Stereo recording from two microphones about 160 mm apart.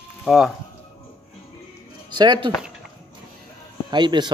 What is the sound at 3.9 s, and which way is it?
Speech, 30° right (ahead or behind).